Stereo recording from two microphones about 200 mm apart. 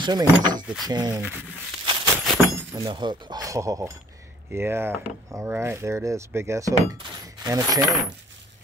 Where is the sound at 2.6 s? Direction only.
20° right (ahead or behind).